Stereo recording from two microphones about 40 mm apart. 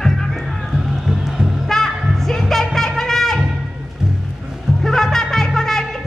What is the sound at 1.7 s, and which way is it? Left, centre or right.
Music, centre.